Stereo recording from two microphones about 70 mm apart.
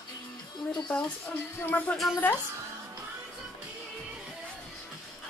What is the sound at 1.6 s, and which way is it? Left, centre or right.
Speech, left.